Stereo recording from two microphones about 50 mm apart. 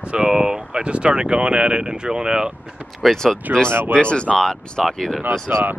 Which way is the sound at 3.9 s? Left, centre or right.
Left.